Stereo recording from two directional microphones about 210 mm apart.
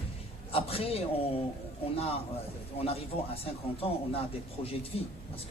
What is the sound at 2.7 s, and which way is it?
Speech, 30° left (ahead or behind).